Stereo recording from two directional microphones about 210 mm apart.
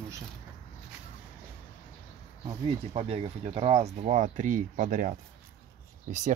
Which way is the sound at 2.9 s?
30° right (ahead or behind).